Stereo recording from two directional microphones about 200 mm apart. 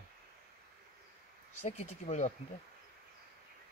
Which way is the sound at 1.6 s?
35° left (ahead or behind).